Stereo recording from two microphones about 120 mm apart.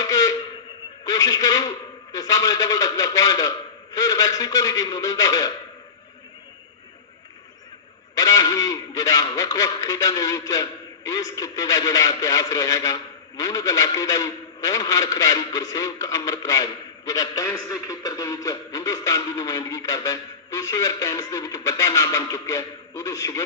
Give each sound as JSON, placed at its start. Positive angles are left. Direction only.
{"t": 0.0, "sound": "a sound", "side_deg": 30}
{"t": 1.0, "sound": "a man's voice", "side_deg": 30}
{"t": 8.1, "sound": "a man's voice", "side_deg": 30}